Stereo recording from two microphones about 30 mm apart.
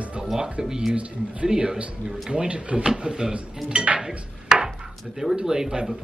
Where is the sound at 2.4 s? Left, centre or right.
Right.